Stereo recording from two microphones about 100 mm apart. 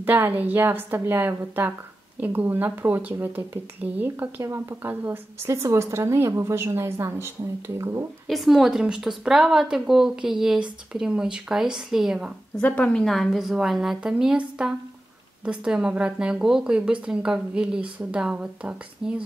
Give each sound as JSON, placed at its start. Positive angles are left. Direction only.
{"t": 0.0, "sound": "speech", "side_deg": -20}
{"t": 8.3, "sound": "speech", "side_deg": 0}
{"t": 12.5, "sound": "a woman's voice", "side_deg": 15}